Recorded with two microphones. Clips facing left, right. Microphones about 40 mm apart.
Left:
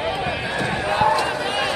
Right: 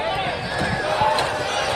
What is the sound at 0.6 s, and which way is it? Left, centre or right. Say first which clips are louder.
Crowd: even; left.